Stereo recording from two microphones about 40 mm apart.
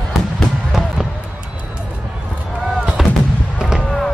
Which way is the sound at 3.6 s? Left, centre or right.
Centre.